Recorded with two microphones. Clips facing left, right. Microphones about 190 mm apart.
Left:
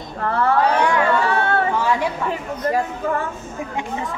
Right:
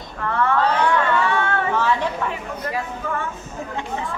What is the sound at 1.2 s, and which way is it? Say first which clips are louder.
Chatter: left 2 dB; 35° left (ahead or behind).